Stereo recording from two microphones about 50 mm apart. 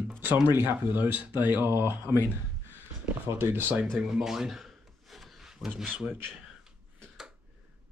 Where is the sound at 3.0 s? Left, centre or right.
Right.